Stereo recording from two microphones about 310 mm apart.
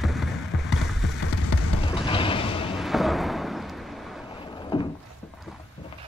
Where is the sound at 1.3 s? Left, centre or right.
Left.